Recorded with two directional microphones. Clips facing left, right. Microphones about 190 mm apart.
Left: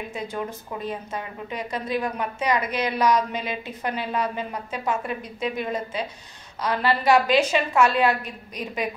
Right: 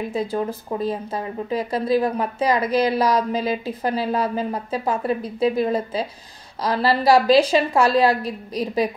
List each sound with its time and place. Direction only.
0.1 s speech: 35° right (ahead or behind)